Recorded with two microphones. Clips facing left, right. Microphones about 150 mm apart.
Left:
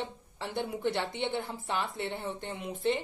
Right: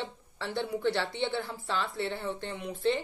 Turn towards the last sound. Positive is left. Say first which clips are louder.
# right 1 dB
turn(degrees=20)  # may be behind; listen again after turning